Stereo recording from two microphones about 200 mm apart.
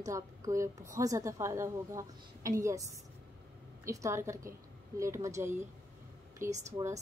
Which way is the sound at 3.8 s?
15° right (ahead or behind).